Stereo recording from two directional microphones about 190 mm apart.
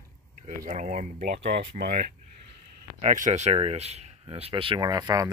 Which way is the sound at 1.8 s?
55° right (ahead or behind).